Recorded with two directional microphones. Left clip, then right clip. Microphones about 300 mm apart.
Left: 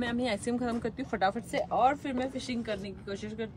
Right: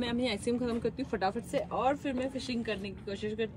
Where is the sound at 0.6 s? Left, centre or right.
Left.